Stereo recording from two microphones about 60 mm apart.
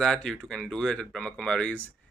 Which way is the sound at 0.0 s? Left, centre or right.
Centre.